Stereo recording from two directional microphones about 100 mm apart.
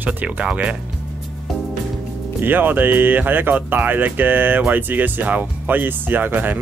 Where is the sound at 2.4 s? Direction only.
20° right (ahead or behind).